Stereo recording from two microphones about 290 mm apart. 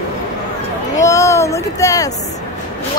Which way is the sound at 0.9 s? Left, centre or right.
Centre.